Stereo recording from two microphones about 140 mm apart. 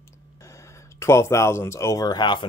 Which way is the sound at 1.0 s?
20° left (ahead or behind).